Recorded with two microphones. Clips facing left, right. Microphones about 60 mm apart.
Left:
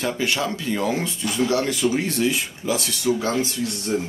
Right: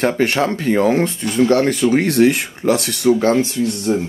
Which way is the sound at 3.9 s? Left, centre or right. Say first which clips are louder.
Right 5 dB; right.